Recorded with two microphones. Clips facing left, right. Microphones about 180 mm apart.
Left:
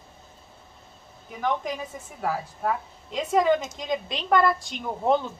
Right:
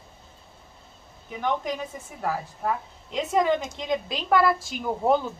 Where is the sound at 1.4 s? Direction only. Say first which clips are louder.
Even; centre (ahead or behind).